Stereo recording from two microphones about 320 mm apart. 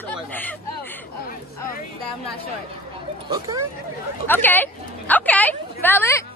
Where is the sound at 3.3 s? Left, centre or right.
Centre.